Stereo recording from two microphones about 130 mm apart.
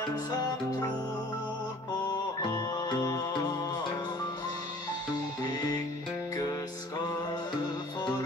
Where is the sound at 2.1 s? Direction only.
35° left (ahead or behind).